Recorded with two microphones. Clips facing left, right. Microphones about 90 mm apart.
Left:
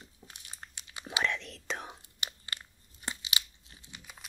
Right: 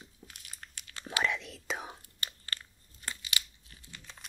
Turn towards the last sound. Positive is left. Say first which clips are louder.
# even
turn(degrees=25)  # may be behind; listen again after turning